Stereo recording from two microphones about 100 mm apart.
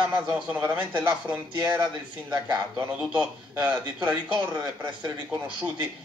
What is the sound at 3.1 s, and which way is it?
A man's voice, 15° right (ahead or behind).